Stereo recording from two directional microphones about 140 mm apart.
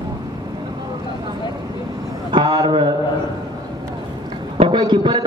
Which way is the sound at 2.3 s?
30° right (ahead or behind).